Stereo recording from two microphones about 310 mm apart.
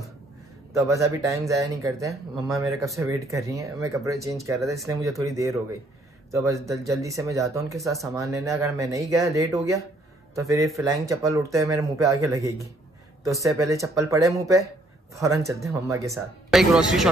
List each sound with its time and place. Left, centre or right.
0.7 s speech: centre
10.7 s speech: centre